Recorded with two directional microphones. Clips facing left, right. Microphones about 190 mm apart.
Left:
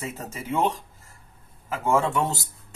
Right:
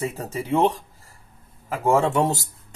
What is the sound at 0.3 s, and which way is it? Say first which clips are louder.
Speech: right 4 dB; 35° right (ahead or behind).